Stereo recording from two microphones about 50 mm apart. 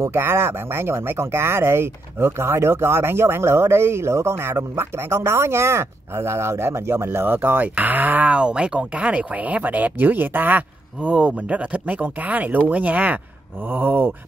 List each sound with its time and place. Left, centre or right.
0.0 s speech: right
8.4 s speech: right
13.7 s a sound: right